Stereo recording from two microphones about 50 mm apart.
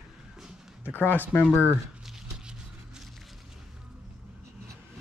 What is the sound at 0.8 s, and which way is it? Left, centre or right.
Speech, left.